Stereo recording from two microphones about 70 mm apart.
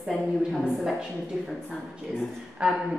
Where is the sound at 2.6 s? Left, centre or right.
Centre.